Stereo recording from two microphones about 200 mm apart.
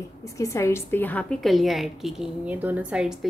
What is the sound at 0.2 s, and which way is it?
A woman's voice, 15° left (ahead or behind).